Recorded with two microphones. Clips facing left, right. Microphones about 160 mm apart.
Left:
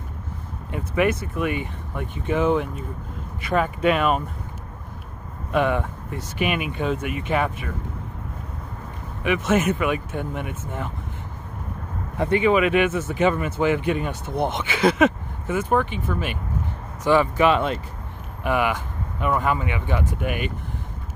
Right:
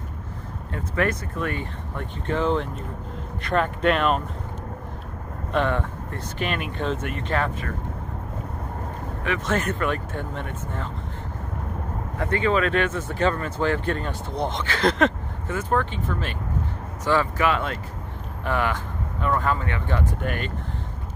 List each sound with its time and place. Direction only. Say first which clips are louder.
0.7 s speech: left 3 dB; 10° left (ahead or behind)
5.5 s speech: left 2 dB; 10° left (ahead or behind)
9.2 s speech: left 5 dB; 10° left (ahead or behind)
12.2 s speech: left 4 dB; 15° left (ahead or behind)